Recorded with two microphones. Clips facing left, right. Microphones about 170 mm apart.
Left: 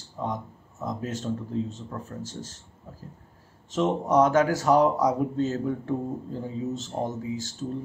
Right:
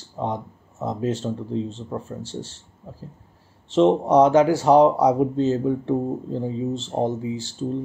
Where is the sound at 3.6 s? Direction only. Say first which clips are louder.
Right 8 dB; 30° right (ahead or behind).